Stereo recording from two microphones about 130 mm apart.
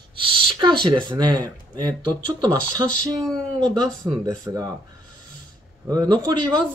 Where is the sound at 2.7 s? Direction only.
90° left.